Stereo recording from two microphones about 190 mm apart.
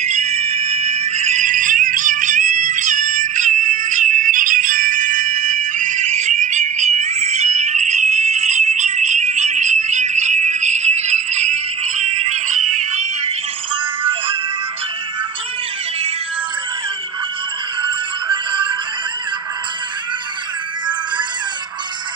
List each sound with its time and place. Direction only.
0.0 s music: 35° right (ahead or behind)
17.8 s music: 25° right (ahead or behind)